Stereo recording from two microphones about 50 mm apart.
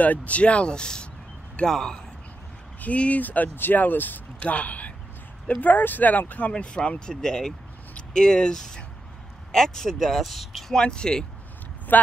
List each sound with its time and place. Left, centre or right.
0.0 s speech: left; by 2.0 s centre
2.8 s speech: left
6.5 s speech: centre
10.8 s speech: centre
11.9 s speech: left